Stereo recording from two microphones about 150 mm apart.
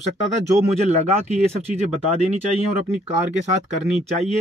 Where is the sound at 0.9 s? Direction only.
45° right (ahead or behind).